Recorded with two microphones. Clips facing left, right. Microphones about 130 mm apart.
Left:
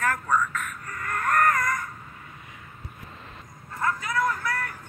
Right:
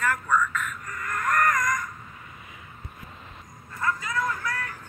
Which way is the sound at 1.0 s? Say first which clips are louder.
Left 1 dB; 35° left (ahead or behind).